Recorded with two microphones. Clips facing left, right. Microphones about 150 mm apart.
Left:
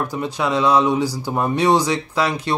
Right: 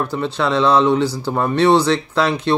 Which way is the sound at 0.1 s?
10° left (ahead or behind).